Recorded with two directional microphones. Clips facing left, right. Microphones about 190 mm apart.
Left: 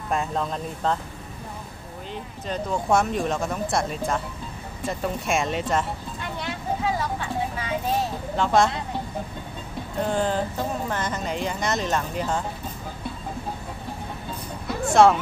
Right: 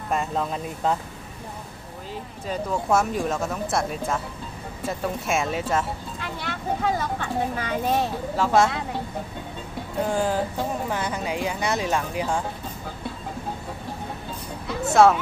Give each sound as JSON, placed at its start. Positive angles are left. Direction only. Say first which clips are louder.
{"t": 0.1, "sound": "speech", "louder": "even", "side_deg": 0}
{"t": 2.4, "sound": "speech", "louder": "even", "side_deg": -5}
{"t": 6.8, "sound": "speech", "louder": "right 2 dB", "side_deg": -55}
{"t": 8.4, "sound": "speech", "louder": "even", "side_deg": -5}
{"t": 9.9, "sound": "speech", "louder": "even", "side_deg": -10}
{"t": 14.9, "sound": "speech", "louder": "even", "side_deg": -5}